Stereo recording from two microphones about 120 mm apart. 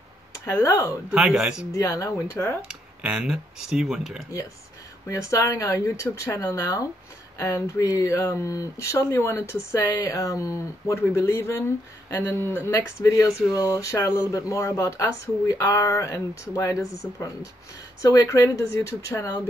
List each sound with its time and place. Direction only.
0.5 s speech: 25° left (ahead or behind)
1.1 s speech: 10° right (ahead or behind)
1.7 s speech: 25° left (ahead or behind)
2.7 s speech: 5° right (ahead or behind)
5.0 s speech: 25° left (ahead or behind)
18.0 s speech: 30° left (ahead or behind)